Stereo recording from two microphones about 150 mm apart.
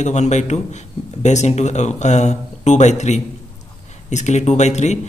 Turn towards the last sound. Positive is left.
turn(degrees=50)  # may be behind; listen again after turning